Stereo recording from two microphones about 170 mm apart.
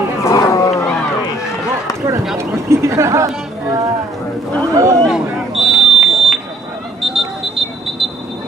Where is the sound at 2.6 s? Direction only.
15° right (ahead or behind).